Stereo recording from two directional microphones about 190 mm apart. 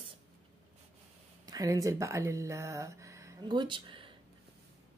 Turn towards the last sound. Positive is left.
turn(degrees=-25)  # may be behind; listen again after turning